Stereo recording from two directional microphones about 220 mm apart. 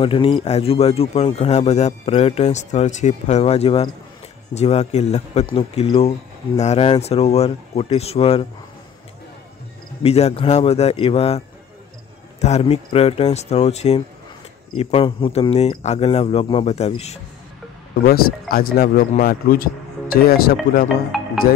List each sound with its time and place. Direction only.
0.0 s a man's voice: 25° left (ahead or behind)
10.0 s a man's voice: 30° left (ahead or behind)
18.5 s speech: 45° left (ahead or behind)
21.4 s music: 40° left (ahead or behind)